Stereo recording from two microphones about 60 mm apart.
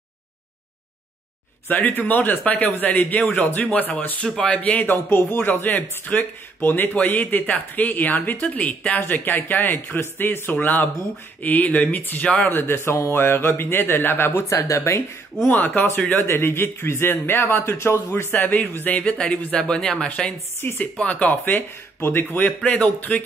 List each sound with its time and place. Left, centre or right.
1.7 s speech: left
4.2 s speech: centre
4.6 s speech: left
5.1 s a man's voice: left
13.1 s speech: left
14.5 s speech: left
15.4 s speech: left
16.3 s a man's voice: left
18.3 s speech: left
20.6 s speech: left
20.9 s speech: left
22.6 s speech: left